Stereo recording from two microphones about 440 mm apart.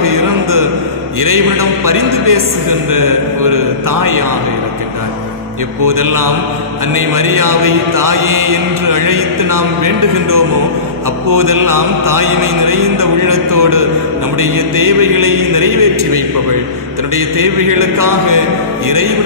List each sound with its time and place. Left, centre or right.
0.0 s a sound: right
1.2 s mantra: right
5.9 s mantra: right